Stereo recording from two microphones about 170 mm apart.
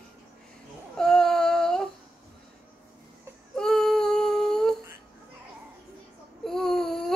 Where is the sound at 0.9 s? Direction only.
5° left (ahead or behind).